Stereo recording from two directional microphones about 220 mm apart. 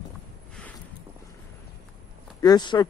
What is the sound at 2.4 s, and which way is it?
Speech, 20° left (ahead or behind).